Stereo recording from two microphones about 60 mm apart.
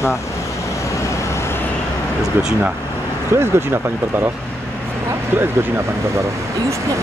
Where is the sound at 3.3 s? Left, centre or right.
Right.